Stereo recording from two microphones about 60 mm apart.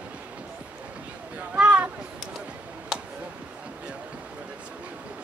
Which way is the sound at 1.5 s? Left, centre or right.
Centre.